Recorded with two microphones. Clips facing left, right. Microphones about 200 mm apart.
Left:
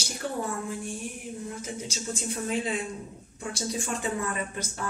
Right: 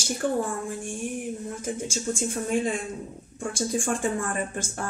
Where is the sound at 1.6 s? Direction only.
50° right (ahead or behind).